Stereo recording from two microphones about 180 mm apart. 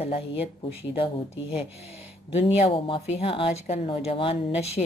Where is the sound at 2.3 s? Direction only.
35° left (ahead or behind).